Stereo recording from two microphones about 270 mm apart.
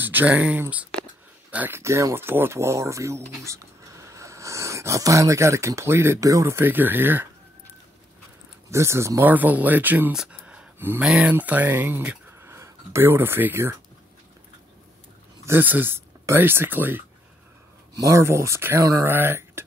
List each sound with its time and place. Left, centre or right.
0.0 s speech: centre
8.6 s speech: centre
15.4 s speech: centre